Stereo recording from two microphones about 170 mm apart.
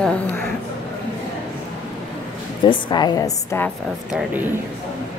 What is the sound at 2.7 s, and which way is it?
A woman's voice, 25° left (ahead or behind).